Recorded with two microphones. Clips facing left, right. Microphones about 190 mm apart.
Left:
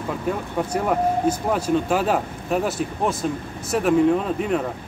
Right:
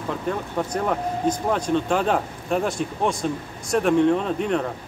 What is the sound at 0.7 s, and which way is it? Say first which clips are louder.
Speech: left 5 dB; 5° left (ahead or behind).